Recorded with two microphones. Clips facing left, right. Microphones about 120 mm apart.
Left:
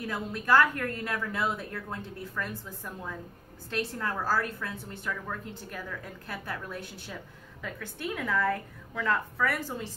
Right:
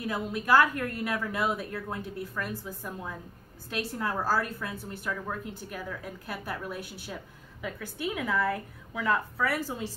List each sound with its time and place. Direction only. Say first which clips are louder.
0.0 s a woman's voice: right 2 dB; 10° right (ahead or behind)